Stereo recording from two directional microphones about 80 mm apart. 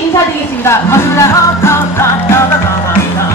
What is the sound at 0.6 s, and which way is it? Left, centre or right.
Music, left.